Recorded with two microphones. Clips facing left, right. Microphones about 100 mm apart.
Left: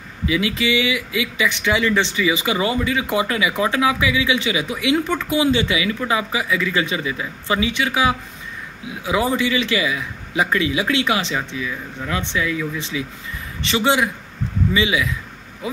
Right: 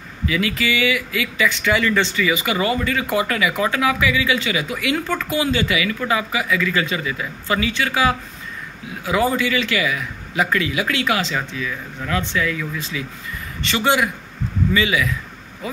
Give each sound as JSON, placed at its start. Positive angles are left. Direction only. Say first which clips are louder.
{"t": 0.3, "sound": "speech", "louder": "left 2 dB", "side_deg": 20}